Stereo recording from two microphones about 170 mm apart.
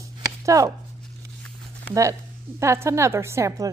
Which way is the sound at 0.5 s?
20° right (ahead or behind).